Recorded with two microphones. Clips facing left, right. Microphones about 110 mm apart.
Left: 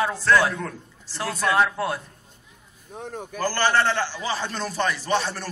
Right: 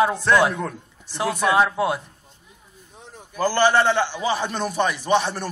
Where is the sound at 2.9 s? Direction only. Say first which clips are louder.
Left 10 dB; 60° left (ahead or behind).